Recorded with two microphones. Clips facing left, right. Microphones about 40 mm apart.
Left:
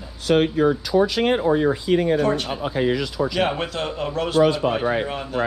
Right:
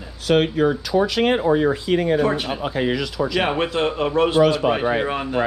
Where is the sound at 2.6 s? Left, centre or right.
Right.